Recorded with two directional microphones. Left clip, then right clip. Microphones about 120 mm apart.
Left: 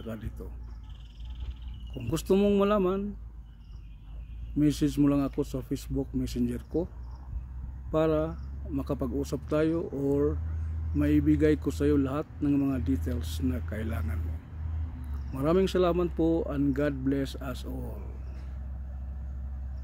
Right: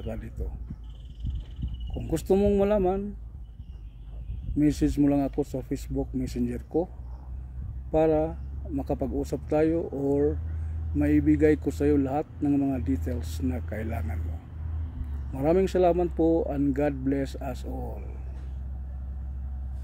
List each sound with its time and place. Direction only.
0.0 s speech: 15° left (ahead or behind)
2.0 s speech: 15° left (ahead or behind)
4.6 s speech: 20° left (ahead or behind)
7.9 s speech: 15° left (ahead or behind)
15.3 s speech: 20° left (ahead or behind)